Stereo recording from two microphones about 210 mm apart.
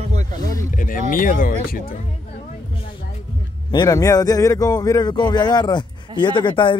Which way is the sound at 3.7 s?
20° left (ahead or behind).